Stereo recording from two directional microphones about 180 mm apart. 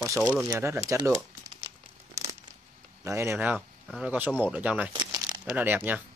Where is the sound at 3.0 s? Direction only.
15° right (ahead or behind).